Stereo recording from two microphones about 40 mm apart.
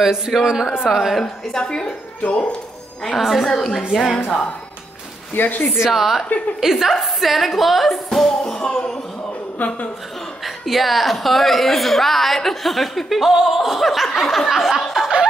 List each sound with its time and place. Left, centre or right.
0.0 s speech: centre
1.2 s a woman's voice: left
2.2 s speech: left
3.2 s a woman's voice: centre
5.3 s speech: left
5.8 s a woman's voice: centre
8.3 s music: centre
9.6 s speech: left
10.4 s a woman's voice: centre